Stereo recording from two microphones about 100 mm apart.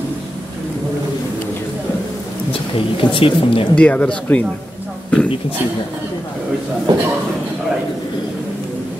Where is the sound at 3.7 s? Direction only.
15° left (ahead or behind).